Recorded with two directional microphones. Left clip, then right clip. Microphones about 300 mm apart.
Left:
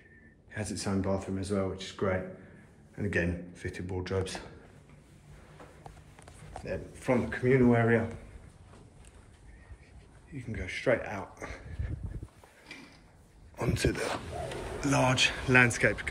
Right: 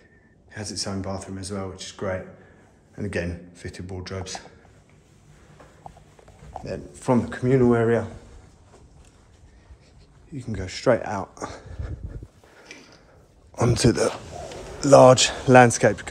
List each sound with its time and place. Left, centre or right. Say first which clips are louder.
0.5 s speech: right 4 dB; centre
6.6 s speech: right 5 dB; centre
10.3 s speech: right 4 dB; centre
13.7 s speech: right 10 dB; right